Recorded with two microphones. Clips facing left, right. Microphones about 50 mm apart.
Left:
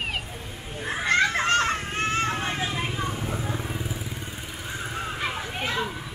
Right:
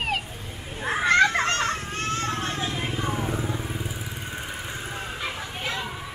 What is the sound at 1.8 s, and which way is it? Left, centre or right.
Music, left.